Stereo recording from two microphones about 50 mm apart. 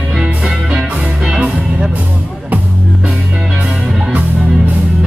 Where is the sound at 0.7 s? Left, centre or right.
Centre.